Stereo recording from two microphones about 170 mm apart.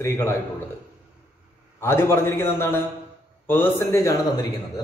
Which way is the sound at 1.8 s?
15° left (ahead or behind).